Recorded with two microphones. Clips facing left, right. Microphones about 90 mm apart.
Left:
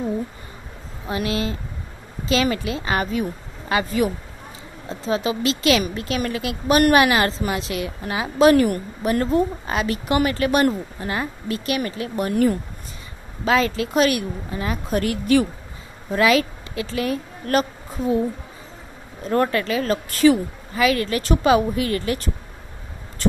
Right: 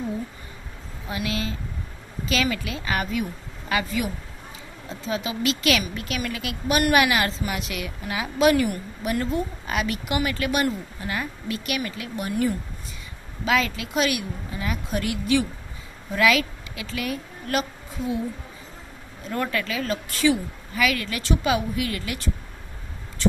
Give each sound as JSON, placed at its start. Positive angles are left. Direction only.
{"t": 1.0, "sound": "a woman's voice", "side_deg": 40}
{"t": 8.6, "sound": "a woman's voice", "side_deg": 50}
{"t": 13.5, "sound": "a woman's voice", "side_deg": 35}
{"t": 19.2, "sound": "a woman's voice", "side_deg": 45}